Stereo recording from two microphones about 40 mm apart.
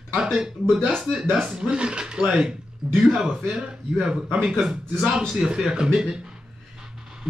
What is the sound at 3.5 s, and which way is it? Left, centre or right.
Speech, right.